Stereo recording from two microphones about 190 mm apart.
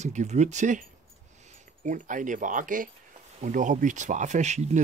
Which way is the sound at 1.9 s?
40° right (ahead or behind).